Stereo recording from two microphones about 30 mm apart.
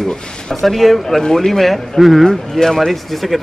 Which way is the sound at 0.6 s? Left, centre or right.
Centre.